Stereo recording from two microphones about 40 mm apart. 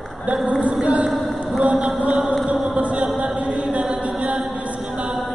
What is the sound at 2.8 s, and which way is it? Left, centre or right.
Chant, right.